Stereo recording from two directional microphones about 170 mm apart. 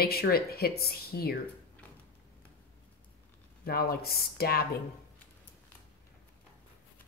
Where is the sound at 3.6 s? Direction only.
65° left (ahead or behind).